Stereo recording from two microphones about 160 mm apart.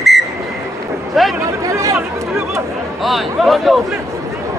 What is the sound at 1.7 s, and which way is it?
Speech, 20° right (ahead or behind).